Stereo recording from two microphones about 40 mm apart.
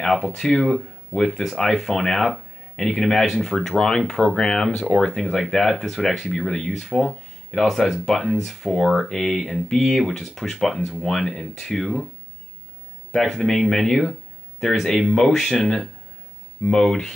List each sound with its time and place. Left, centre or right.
0.0 s speech: centre
3.6 s speech: centre
13.1 s speech: centre